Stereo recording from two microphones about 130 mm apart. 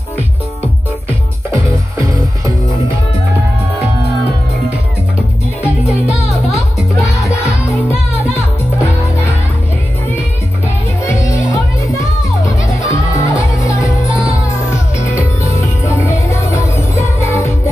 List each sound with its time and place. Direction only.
1.5 s music: 25° right (ahead or behind)
11.1 s music: 25° left (ahead or behind)
12.8 s music: 25° left (ahead or behind)
15.8 s music: 20° left (ahead or behind)